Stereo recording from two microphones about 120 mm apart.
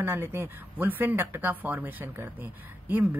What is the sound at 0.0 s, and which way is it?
Speech, 20° right (ahead or behind).